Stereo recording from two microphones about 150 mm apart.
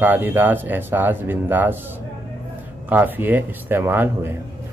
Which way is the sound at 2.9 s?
10° right (ahead or behind).